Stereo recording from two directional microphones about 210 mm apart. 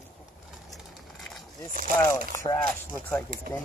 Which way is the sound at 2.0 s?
15° left (ahead or behind).